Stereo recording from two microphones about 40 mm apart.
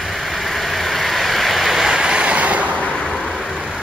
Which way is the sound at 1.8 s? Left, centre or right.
Right.